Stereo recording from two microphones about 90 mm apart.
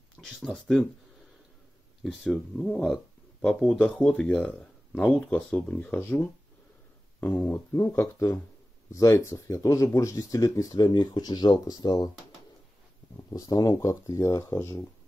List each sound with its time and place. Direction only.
0.2 s speech: 5° left (ahead or behind)
2.0 s speech: 5° left (ahead or behind)
5.9 s speech: 25° left (ahead or behind); by 12.1 s 50° left (ahead or behind)
13.3 s speech: 45° left (ahead or behind)